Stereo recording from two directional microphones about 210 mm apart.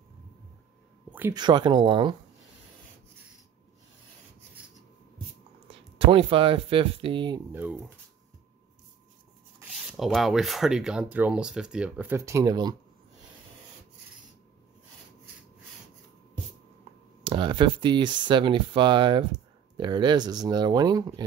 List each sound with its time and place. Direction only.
1.1 s a sound: 10° right (ahead or behind)
1.4 s speech: 20° right (ahead or behind)
5.7 s speech: 25° right (ahead or behind)
7.5 s speech: 10° right (ahead or behind)
9.8 s speech: centre (ahead or behind); by 12.7 s 20° right (ahead or behind)
17.2 s speech: 25° right (ahead or behind)